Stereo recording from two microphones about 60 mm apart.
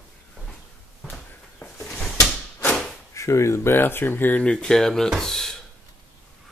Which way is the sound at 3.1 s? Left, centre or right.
Left.